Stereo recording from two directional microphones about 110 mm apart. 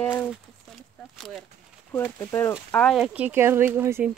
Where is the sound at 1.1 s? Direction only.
5° left (ahead or behind).